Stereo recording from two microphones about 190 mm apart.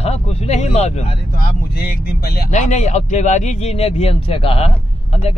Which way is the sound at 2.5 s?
40° left (ahead or behind).